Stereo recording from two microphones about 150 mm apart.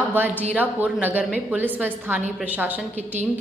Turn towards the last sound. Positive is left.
turn(degrees=-10)  # may be behind; listen again after turning